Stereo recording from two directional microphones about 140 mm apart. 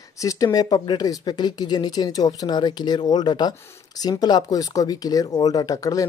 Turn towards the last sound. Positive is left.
turn(degrees=25)  # may be behind; listen again after turning